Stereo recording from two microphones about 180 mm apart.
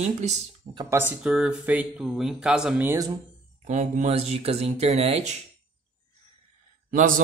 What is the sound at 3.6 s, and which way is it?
Speech, 40° right (ahead or behind).